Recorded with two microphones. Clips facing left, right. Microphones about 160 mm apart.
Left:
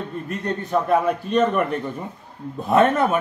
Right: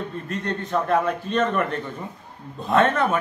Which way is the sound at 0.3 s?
5° left (ahead or behind).